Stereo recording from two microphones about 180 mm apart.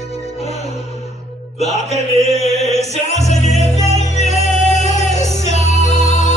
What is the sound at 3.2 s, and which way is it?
Music, 40° left (ahead or behind).